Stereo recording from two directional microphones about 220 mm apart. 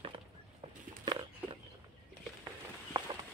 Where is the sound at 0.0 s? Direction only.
25° right (ahead or behind).